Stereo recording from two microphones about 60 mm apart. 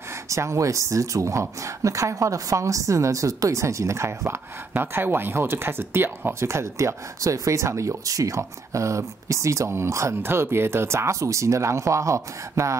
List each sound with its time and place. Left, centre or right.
0.1 s speech: right
4.7 s speech: right
10.2 s speech: right